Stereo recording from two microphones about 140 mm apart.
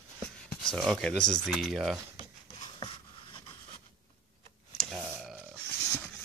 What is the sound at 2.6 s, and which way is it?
Writing, 35° left (ahead or behind).